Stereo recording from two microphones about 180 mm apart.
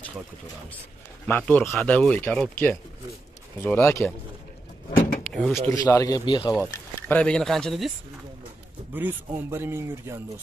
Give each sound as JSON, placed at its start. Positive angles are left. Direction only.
{"t": 1.2, "sound": "speech", "side_deg": 10}
{"t": 5.2, "sound": "speech", "side_deg": 0}
{"t": 5.7, "sound": "speech", "side_deg": 15}
{"t": 7.1, "sound": "speech", "side_deg": 5}
{"t": 8.9, "sound": "a man's voice", "side_deg": -10}